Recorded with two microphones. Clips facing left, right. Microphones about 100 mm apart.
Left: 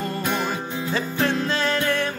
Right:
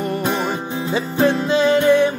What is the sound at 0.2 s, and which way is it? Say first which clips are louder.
Music: right 4 dB; 20° right (ahead or behind).